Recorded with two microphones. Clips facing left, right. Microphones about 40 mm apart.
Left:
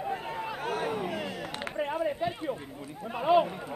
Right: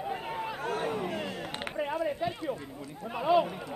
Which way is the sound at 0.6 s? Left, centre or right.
Left.